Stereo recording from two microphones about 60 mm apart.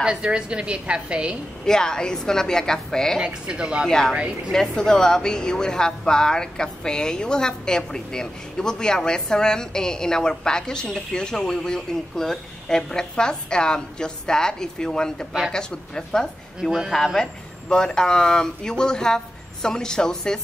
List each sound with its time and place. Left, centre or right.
0.0 s a woman's voice: centre
1.7 s a woman's voice: centre
3.2 s a woman's voice: centre
4.5 s a woman's voice: centre